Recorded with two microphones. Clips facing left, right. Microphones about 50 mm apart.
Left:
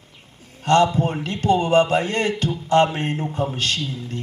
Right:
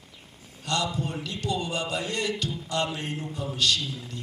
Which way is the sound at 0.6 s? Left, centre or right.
Left.